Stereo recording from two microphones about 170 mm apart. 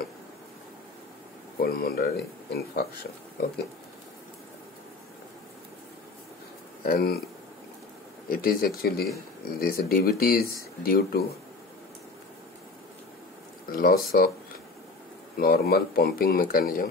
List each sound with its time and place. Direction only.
1.6 s speech: 60° left (ahead or behind)
6.8 s speech: 60° left (ahead or behind)
8.3 s speech: 60° left (ahead or behind)
13.7 s speech: 60° left (ahead or behind)
15.3 s speech: 65° left (ahead or behind)